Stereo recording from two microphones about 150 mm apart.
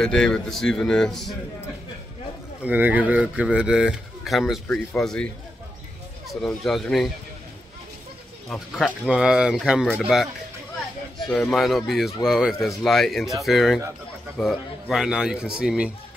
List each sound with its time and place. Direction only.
0.0 s speech: 5° left (ahead or behind)
2.6 s speech: 10° right (ahead or behind)
8.5 s speech: centre (ahead or behind)
11.2 s speech: 5° left (ahead or behind)